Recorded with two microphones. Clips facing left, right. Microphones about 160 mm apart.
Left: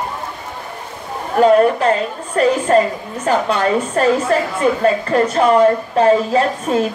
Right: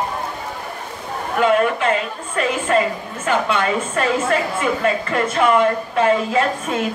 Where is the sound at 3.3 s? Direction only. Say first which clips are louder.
Left 3 dB; 35° left (ahead or behind).